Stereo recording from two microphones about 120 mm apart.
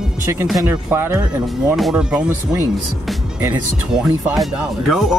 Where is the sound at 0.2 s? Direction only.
20° right (ahead or behind).